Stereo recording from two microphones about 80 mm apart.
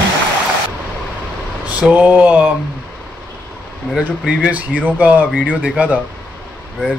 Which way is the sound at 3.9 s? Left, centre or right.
Centre.